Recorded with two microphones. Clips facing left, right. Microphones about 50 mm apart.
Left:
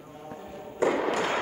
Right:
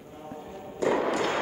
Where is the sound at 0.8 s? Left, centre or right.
Left.